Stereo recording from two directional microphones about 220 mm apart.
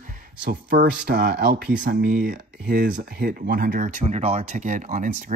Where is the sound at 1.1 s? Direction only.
45° right (ahead or behind).